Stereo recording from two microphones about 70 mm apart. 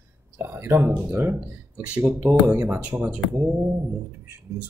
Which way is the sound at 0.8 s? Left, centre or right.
Centre.